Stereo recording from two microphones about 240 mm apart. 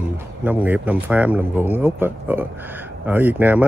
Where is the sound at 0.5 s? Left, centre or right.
Centre.